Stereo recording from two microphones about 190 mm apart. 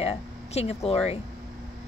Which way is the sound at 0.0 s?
35° left (ahead or behind).